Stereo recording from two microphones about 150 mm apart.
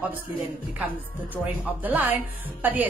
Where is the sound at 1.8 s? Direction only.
10° right (ahead or behind).